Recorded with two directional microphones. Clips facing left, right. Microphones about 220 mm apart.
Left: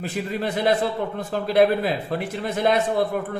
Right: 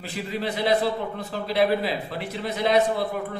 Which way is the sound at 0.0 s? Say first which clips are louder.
Left 3 dB; 50° left (ahead or behind).